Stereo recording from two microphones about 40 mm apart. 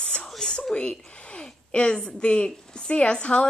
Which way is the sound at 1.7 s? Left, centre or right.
Left.